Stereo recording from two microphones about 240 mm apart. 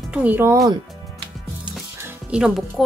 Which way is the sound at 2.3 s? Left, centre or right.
Centre.